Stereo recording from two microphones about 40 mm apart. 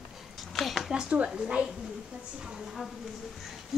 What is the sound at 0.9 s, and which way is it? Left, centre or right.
Speech, right.